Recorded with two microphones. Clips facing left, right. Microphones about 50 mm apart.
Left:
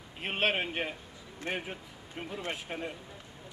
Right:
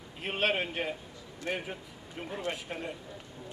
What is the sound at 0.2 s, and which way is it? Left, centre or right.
Speech, left.